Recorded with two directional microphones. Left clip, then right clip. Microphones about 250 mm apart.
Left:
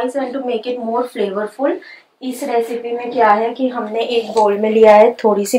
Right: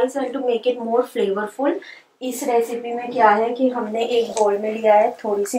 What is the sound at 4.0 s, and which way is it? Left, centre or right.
Speech, left.